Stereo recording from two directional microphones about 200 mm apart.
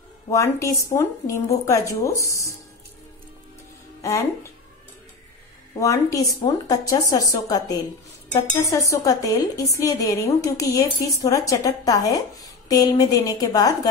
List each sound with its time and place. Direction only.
0.3 s speech: 15° left (ahead or behind)
4.0 s speech: 15° left (ahead or behind)
5.8 s speech: 15° left (ahead or behind)